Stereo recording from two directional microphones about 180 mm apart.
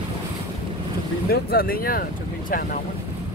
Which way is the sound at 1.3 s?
55° left (ahead or behind).